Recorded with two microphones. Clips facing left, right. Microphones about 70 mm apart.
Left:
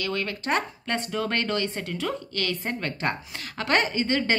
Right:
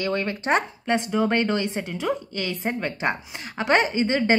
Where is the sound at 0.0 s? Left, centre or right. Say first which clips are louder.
Right 4 dB; right.